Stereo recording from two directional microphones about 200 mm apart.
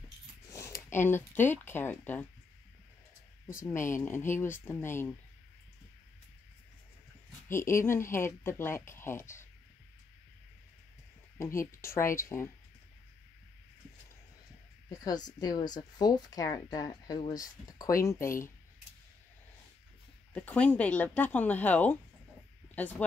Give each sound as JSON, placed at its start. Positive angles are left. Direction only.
{"t": 0.5, "sound": "speech", "side_deg": 15}
{"t": 3.5, "sound": "a woman's voice", "side_deg": 15}
{"t": 7.4, "sound": "a woman's voice", "side_deg": 15}
{"t": 11.3, "sound": "a woman's voice", "side_deg": 15}
{"t": 14.9, "sound": "speech", "side_deg": 20}
{"t": 20.3, "sound": "a woman's voice", "side_deg": 5}